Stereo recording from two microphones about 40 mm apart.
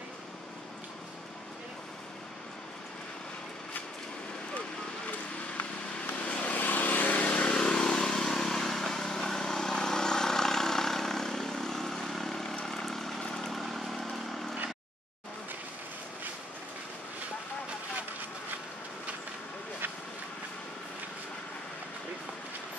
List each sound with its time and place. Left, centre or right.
5.6 s vehicle: left
7.2 s vehicle: left; by 14.4 s centre